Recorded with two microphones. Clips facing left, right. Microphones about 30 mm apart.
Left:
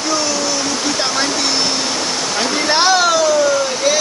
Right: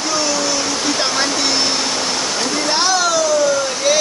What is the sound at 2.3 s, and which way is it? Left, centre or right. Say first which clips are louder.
Speech: left 5 dB; centre.